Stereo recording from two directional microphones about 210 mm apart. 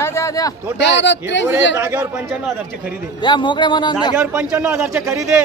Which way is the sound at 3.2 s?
20° left (ahead or behind).